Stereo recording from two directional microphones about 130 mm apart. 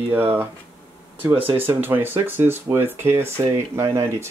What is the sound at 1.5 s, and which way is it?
Speech, 15° right (ahead or behind).